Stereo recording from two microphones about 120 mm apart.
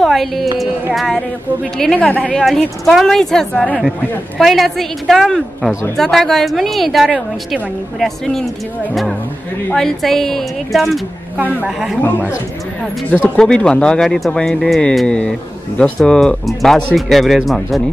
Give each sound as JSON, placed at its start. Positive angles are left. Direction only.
{"t": 0.0, "sound": "a woman's voice", "side_deg": 0}
{"t": 2.4, "sound": "a woman's voice", "side_deg": 0}
{"t": 9.7, "sound": "a woman's voice", "side_deg": 5}
{"t": 13.1, "sound": "a woman's voice", "side_deg": 10}